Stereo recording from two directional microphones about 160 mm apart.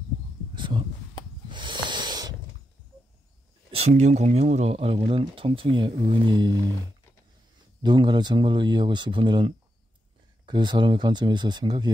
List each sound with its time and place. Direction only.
0.6 s a sound: 30° right (ahead or behind)
3.7 s speech: 45° right (ahead or behind); by 6.6 s 25° right (ahead or behind)
7.8 s speech: 30° right (ahead or behind)